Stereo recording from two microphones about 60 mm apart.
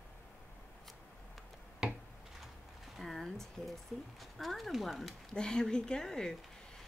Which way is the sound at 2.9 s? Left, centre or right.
Centre.